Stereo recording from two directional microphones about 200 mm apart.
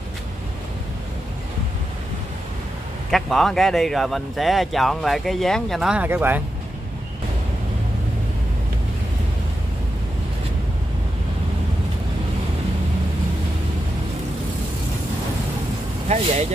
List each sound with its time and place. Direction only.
3.1 s speech: centre (ahead or behind)
16.1 s speech: 35° right (ahead or behind)